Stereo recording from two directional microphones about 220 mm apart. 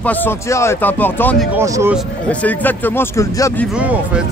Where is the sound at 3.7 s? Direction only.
5° right (ahead or behind).